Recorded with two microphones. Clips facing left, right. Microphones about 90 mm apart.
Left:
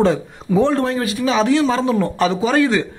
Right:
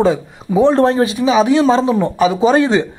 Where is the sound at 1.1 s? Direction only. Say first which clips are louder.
Right 4 dB; 15° right (ahead or behind).